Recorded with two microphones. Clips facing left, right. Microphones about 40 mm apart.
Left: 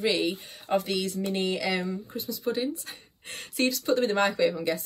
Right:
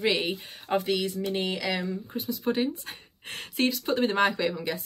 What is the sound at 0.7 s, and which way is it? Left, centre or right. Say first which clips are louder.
Speech: even; centre.